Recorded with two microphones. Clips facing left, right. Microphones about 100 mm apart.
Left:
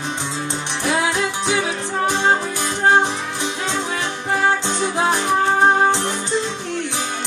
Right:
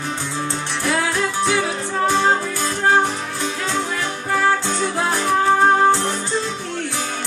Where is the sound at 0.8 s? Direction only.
20° left (ahead or behind).